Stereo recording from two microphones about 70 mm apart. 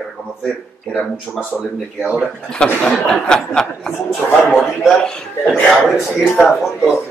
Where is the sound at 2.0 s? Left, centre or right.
Right.